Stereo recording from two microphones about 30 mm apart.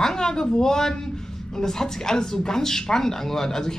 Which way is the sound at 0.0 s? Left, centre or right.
Centre.